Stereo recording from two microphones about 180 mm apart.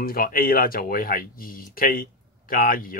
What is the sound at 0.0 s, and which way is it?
Speech, 55° left (ahead or behind).